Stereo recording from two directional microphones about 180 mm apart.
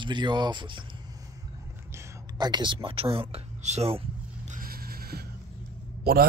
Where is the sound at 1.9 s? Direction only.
20° right (ahead or behind); by 4.0 s 35° right (ahead or behind).